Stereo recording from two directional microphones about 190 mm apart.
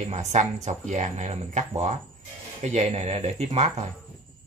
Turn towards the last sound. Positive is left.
turn(degrees=-35)  # may be behind; listen again after turning